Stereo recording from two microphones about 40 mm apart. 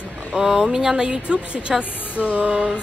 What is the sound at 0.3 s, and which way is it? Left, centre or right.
A woman's voice, right.